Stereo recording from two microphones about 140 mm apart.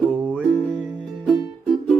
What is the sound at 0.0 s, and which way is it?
Music, 5° right (ahead or behind).